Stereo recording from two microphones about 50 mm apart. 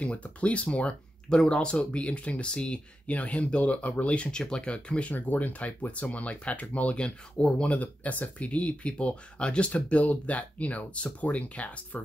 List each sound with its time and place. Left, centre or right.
0.0 s speech: left
5.1 s speech: left